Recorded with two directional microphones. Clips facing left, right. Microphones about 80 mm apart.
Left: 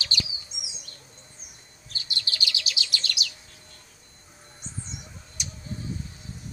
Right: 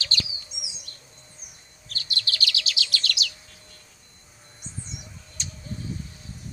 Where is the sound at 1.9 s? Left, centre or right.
Left.